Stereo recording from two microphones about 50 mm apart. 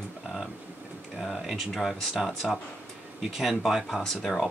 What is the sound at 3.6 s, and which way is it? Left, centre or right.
Speech, centre.